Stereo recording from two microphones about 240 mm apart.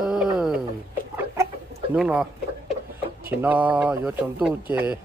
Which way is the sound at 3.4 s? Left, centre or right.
Centre.